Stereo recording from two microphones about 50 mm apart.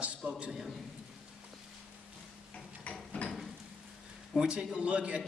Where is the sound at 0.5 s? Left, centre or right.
Centre.